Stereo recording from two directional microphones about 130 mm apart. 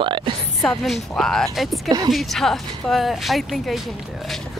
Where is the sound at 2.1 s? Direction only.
Centre (ahead or behind).